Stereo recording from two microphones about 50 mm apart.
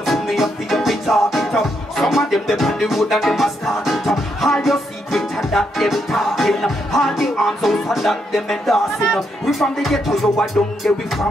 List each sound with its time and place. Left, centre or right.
0.0 s music: centre
10.9 s music: centre